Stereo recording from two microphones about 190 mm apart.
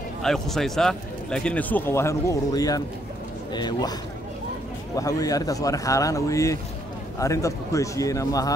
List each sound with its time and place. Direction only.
0.2 s speech: centre (ahead or behind); by 3.9 s 20° left (ahead or behind)
4.9 s speech: 20° left (ahead or behind)